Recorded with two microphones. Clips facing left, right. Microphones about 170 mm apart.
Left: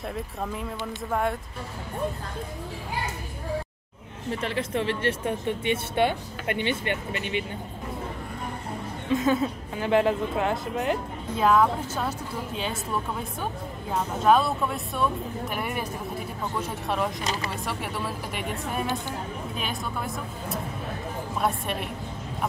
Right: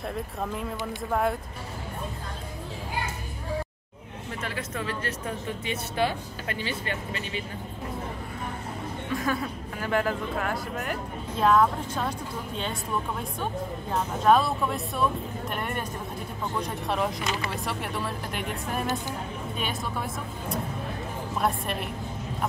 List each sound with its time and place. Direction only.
0.1 s a woman's voice: centre (ahead or behind)
4.4 s speech: 30° left (ahead or behind)
9.1 s speech: 25° left (ahead or behind)
11.3 s a woman's voice: centre (ahead or behind)
14.2 s a woman's voice: centre (ahead or behind)
21.4 s a woman's voice: centre (ahead or behind)